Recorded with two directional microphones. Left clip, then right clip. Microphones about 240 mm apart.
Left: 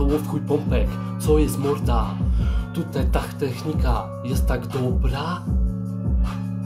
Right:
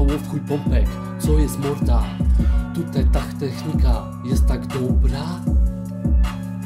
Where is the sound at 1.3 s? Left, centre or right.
Right.